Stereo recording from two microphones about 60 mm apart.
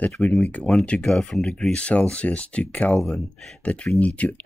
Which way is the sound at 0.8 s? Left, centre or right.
Centre.